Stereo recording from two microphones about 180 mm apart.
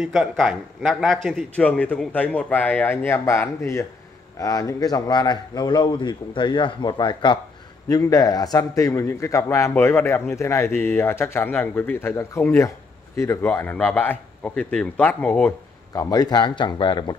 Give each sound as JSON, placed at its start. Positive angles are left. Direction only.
{"t": 0.0, "sound": "a man's voice", "side_deg": 0}
{"t": 15.9, "sound": "a man's voice", "side_deg": 20}